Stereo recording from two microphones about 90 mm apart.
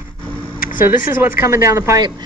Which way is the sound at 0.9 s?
30° right (ahead or behind).